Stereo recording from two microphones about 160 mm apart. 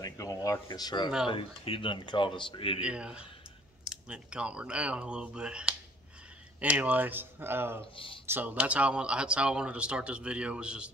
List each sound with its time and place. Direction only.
0.0 s speech: 20° left (ahead or behind)
2.8 s speech: 5° right (ahead or behind)
7.9 s speech: 35° left (ahead or behind)
8.3 s speech: 10° right (ahead or behind)